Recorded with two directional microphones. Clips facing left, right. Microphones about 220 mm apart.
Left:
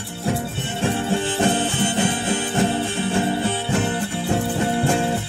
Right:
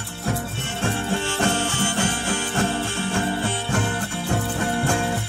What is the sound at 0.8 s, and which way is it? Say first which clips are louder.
Music: left 3 dB; 15° left (ahead or behind).